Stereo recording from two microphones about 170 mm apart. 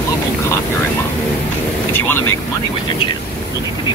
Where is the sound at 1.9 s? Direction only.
10° left (ahead or behind).